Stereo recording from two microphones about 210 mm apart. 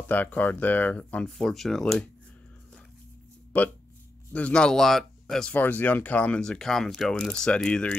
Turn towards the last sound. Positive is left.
turn(degrees=5)  # may be behind; listen again after turning